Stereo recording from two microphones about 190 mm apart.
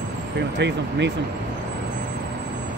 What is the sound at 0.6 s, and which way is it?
Speech, 65° right (ahead or behind).